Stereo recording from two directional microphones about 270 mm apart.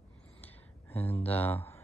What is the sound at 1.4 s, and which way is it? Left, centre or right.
Speech, centre.